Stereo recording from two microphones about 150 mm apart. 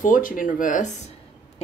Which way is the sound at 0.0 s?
65° left (ahead or behind).